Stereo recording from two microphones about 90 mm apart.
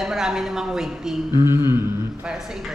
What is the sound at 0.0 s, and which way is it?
A woman's voice, 5° right (ahead or behind).